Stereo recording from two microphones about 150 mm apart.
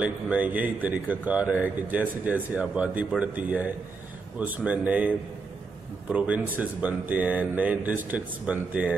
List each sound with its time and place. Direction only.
0.0 s speech: 10° right (ahead or behind)